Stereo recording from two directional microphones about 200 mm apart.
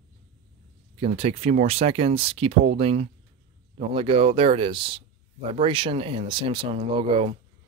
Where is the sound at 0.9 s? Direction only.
30° right (ahead or behind).